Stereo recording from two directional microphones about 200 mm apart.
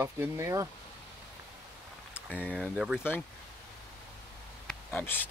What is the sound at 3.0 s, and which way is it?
Speech, 10° left (ahead or behind).